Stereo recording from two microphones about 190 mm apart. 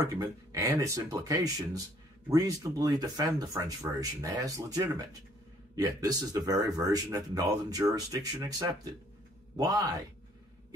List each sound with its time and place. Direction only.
0.0 s speech: 15° right (ahead or behind)